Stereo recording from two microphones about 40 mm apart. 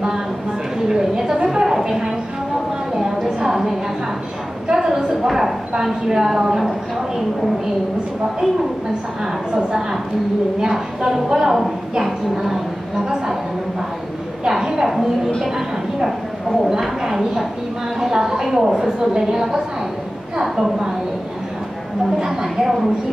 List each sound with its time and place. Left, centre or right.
0.8 s a woman's voice: centre
1.5 s a sound: centre
3.3 s a sound: centre
4.6 s a woman's voice: centre
9.2 s a woman's voice: centre
22.2 s a woman's voice: centre